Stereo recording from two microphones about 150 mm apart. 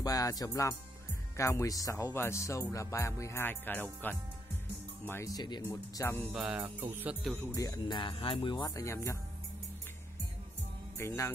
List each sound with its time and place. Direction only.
0.0 s speech: 25° left (ahead or behind)
5.7 s speech: 15° left (ahead or behind)
6.3 s music: 5° right (ahead or behind)
7.5 s speech: 25° left (ahead or behind)
11.0 s speech: 15° left (ahead or behind)